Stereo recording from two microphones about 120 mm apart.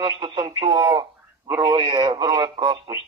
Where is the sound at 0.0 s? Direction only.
40° right (ahead or behind).